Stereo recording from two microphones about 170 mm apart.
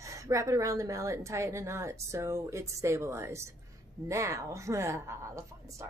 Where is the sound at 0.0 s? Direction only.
20° right (ahead or behind).